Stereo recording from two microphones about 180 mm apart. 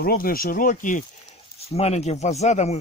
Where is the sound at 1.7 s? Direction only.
35° left (ahead or behind).